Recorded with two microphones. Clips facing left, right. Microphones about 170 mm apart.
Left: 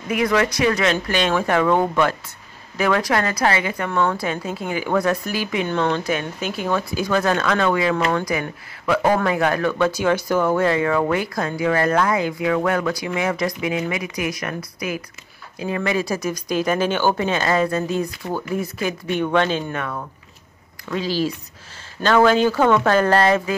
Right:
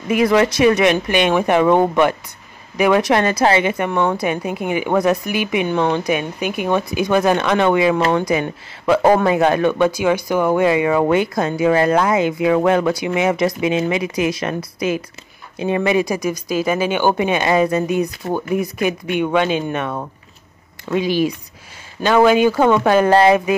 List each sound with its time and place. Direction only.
0.1 s a woman's voice: 25° right (ahead or behind)